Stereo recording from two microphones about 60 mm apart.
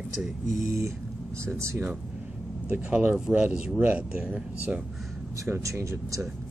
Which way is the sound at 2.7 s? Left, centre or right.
Centre.